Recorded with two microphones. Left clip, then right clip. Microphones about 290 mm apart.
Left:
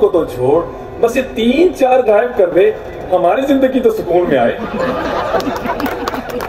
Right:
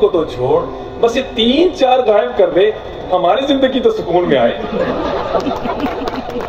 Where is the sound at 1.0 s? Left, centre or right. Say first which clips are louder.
Even; left.